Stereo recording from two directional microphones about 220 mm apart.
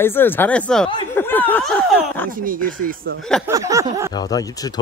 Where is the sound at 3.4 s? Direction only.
15° right (ahead or behind).